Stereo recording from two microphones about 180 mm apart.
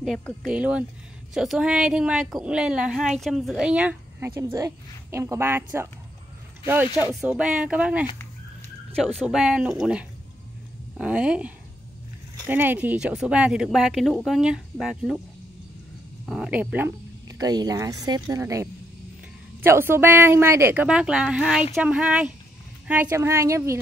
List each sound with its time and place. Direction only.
0.0 s a woman's voice: centre (ahead or behind)
4.3 s a woman's voice: 15° right (ahead or behind)
16.3 s a woman's voice: 5° right (ahead or behind)